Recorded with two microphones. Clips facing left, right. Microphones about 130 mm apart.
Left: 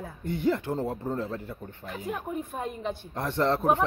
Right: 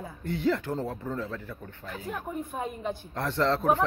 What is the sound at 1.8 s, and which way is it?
Speech, 15° left (ahead or behind).